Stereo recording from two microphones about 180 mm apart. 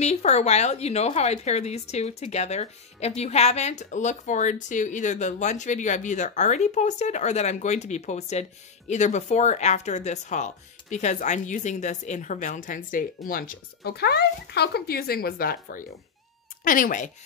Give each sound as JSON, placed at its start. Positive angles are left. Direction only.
{"t": 0.0, "sound": "a woman's voice", "side_deg": 40}